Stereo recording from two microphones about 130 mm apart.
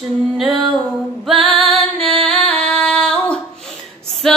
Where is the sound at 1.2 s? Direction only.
Centre (ahead or behind).